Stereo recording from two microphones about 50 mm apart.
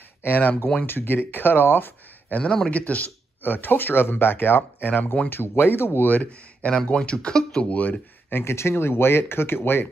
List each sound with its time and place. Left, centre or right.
0.2 s speech: left
2.3 s speech: left
5.3 s speech: left
6.0 s speech: left
6.9 s speech: left
7.7 s speech: left
8.3 s speech: left